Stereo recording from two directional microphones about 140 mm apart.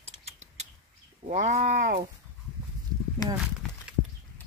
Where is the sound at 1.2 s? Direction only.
55° right (ahead or behind); by 2.0 s 70° right (ahead or behind).